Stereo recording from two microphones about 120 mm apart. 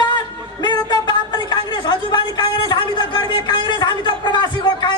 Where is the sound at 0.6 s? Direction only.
35° left (ahead or behind).